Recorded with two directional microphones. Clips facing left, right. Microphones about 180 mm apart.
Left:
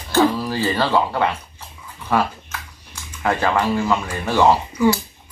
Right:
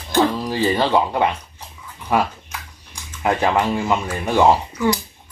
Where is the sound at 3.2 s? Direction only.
15° right (ahead or behind).